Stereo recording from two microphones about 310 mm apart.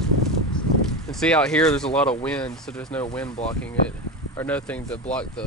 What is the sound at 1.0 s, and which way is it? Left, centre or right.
Speech, centre.